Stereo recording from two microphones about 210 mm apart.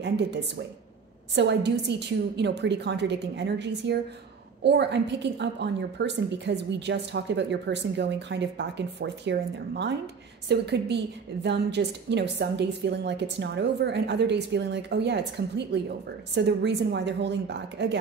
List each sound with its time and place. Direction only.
0.0 s a woman's voice: 55° right (ahead or behind)